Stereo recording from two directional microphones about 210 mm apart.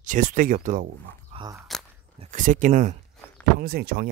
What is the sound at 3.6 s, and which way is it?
Speech, 45° right (ahead or behind).